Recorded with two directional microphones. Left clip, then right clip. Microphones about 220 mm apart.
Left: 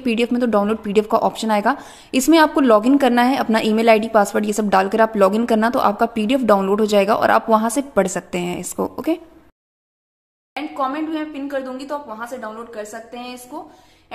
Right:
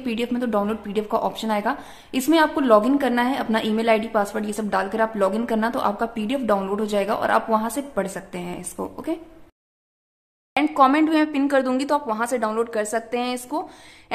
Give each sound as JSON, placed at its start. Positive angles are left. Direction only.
{"t": 0.0, "sound": "a woman's voice", "side_deg": 25}
{"t": 10.5, "sound": "speech", "side_deg": -40}